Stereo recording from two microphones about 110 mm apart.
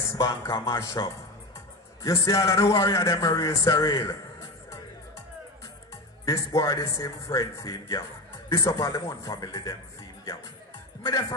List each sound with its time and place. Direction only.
0.1 s a man's voice: 30° left (ahead or behind)
6.2 s a man's voice: 30° left (ahead or behind)
11.0 s speech: 35° left (ahead or behind)